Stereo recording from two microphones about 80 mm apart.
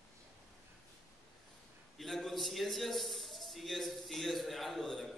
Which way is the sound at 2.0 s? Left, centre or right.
Centre.